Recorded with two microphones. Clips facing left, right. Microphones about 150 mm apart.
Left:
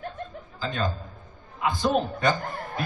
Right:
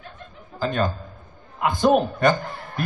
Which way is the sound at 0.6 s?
55° right (ahead or behind).